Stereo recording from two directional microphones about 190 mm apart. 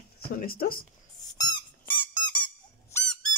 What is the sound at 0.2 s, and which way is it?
Speech, 50° left (ahead or behind).